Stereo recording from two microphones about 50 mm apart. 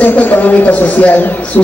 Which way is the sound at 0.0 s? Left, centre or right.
Left.